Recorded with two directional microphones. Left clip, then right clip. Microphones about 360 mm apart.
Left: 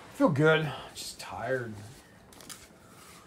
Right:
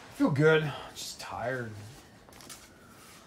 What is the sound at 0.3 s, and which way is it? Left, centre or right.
Speech, centre.